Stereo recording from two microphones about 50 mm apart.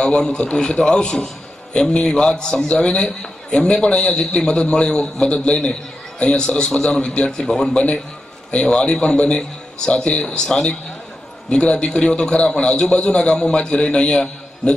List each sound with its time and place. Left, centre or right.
0.0 s a man's voice: centre
2.8 s a man's voice: left; by 7.7 s centre
7.7 s a man's voice: left